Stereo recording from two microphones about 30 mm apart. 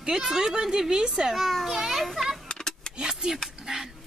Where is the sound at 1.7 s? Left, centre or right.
Centre.